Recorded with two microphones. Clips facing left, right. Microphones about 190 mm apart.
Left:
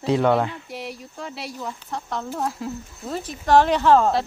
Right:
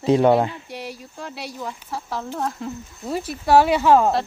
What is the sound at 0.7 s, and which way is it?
Speech, centre (ahead or behind).